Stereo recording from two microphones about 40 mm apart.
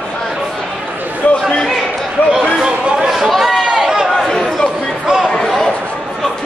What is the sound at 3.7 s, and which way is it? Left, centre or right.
Run, right.